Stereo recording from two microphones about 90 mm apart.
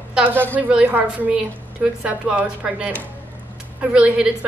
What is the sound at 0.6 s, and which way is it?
A woman's voice, 10° right (ahead or behind).